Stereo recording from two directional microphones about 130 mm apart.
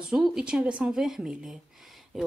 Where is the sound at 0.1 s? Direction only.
5° right (ahead or behind).